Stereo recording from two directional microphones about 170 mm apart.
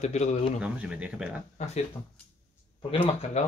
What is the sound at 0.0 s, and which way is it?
Speech, 40° left (ahead or behind).